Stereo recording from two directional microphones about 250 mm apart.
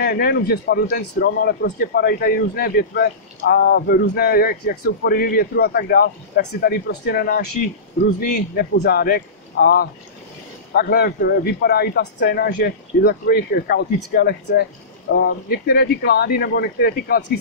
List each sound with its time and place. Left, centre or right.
0.0 s speech: left